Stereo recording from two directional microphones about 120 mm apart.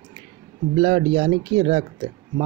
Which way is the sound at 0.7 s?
55° right (ahead or behind).